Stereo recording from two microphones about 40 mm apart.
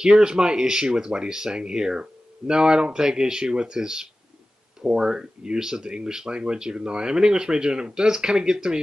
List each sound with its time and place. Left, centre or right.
0.0 s speech: right